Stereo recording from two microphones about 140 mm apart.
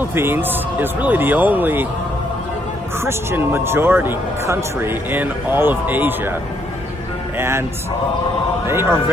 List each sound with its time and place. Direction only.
0.0 s speech: 15° right (ahead or behind)
3.0 s speech: 15° right (ahead or behind)
7.3 s speech: 20° right (ahead or behind)
8.6 s speech: 20° right (ahead or behind)